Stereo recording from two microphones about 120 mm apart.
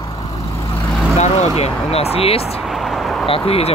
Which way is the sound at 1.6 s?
60° left (ahead or behind).